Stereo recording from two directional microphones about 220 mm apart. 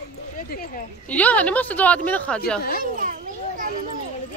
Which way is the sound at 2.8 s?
35° right (ahead or behind).